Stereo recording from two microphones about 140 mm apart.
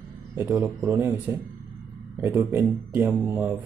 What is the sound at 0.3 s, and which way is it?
A man's voice, 15° right (ahead or behind).